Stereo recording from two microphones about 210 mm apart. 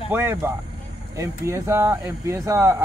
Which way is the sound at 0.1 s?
10° right (ahead or behind).